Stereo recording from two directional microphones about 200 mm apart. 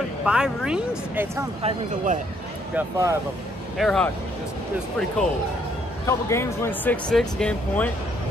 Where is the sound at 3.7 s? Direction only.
Centre (ahead or behind).